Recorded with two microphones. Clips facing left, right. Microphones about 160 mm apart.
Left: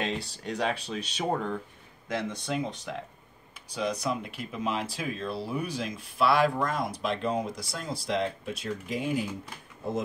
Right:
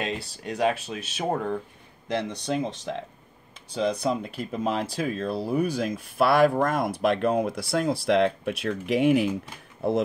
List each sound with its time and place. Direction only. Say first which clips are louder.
0.0 s speech: right 1 dB; 5° right (ahead or behind)
2.1 s speech: right 4 dB; 25° right (ahead or behind); by 10.0 s 75° right (ahead or behind)